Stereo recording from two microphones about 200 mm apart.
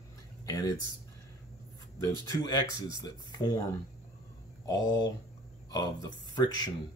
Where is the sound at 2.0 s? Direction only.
20° left (ahead or behind).